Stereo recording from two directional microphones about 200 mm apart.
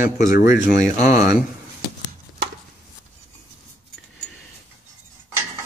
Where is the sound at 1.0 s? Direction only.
15° right (ahead or behind).